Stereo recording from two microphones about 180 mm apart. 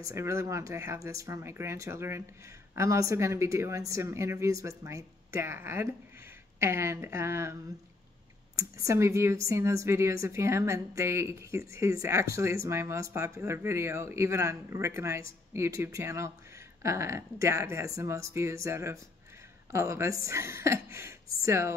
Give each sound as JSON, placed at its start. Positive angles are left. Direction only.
{"t": 0.0, "sound": "speech", "side_deg": -15}
{"t": 8.5, "sound": "speech", "side_deg": -15}